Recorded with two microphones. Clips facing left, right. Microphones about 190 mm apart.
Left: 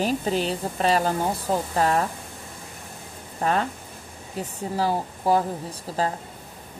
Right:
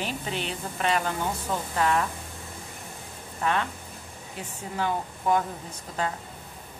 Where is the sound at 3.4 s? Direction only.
40° left (ahead or behind).